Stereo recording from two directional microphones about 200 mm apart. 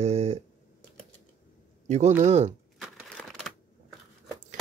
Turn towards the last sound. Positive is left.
turn(degrees=0)  # may be behind; listen again after turning